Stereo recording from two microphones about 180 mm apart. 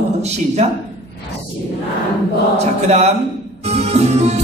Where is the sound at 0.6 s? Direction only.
40° right (ahead or behind).